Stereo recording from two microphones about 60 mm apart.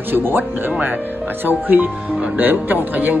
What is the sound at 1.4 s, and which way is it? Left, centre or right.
Speech, right.